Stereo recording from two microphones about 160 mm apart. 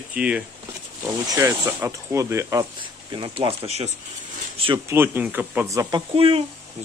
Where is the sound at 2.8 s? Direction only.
30° right (ahead or behind).